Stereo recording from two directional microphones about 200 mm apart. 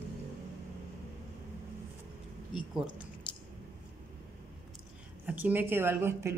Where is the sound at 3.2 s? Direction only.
25° left (ahead or behind).